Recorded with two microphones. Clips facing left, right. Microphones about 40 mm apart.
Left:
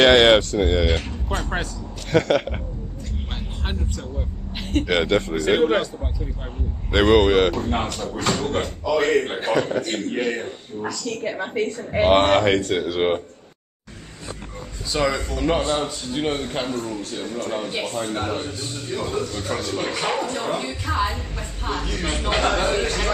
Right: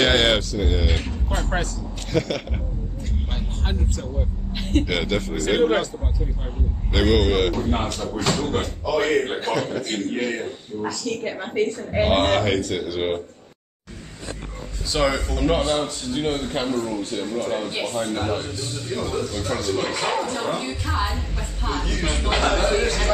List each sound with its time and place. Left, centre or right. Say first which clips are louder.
0.0 s speech: left 5 dB; left
0.9 s a man's voice: left 1 dB; centre
2.1 s a man's voice: left 4 dB; left
4.6 s speech: right 1 dB; centre
5.0 s speech: left 4 dB; left
5.3 s a man's voice: right 2 dB; centre
6.9 s speech: left 4 dB; left
7.9 s a man's voice: right 1 dB; centre
8.3 s a man's voice: left 1 dB; centre
9.4 s speech: left 3 dB; left
9.8 s a man's voice: left 1 dB; centre
12.5 s speech: left 3 dB; left
14.9 s a man's voice: right 1 dB; centre
22.8 s a sound: right 1 dB; centre